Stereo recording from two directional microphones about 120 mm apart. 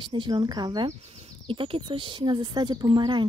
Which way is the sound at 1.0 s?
55° right (ahead or behind).